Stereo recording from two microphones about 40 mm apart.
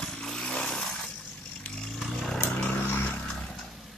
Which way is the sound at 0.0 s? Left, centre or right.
Centre.